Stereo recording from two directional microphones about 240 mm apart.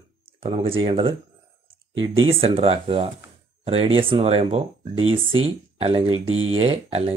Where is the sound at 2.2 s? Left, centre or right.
Right.